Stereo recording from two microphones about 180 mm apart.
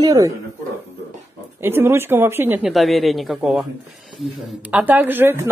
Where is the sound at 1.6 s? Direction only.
15° right (ahead or behind).